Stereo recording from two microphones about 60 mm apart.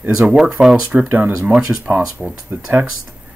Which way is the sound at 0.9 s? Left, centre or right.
Right.